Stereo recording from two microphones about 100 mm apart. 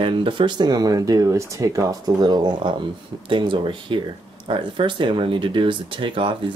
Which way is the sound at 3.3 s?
55° right (ahead or behind).